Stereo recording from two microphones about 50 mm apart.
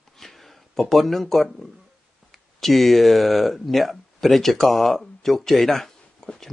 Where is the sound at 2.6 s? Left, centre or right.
Centre.